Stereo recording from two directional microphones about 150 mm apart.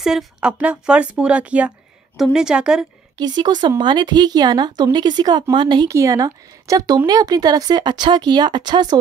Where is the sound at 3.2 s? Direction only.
30° right (ahead or behind).